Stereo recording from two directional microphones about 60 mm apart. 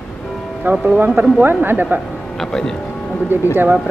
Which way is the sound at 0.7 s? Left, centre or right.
Right.